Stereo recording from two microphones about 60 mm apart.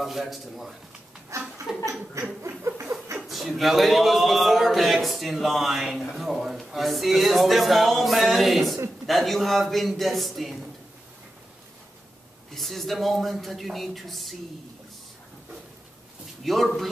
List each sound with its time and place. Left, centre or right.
0.0 s speech: centre
1.3 s a sound: right
1.7 s chuckle: centre
2.6 s a sound: right
3.3 s speech: centre
12.5 s speech: centre
16.4 s speech: centre